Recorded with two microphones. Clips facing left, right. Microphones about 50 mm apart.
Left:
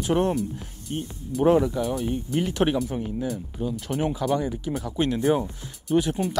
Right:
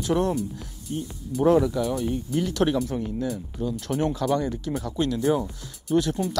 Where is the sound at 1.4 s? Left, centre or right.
Left.